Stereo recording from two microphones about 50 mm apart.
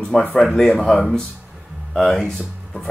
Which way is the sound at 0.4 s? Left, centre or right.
Centre.